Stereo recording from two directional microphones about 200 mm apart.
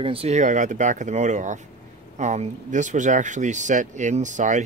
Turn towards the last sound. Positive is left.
turn(degrees=-40)  # may be behind; listen again after turning